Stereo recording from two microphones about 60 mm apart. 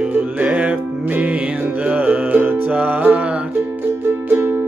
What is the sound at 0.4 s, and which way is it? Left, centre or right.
Music, right.